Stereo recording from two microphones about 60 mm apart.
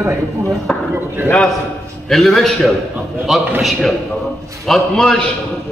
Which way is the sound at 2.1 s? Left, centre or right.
Centre.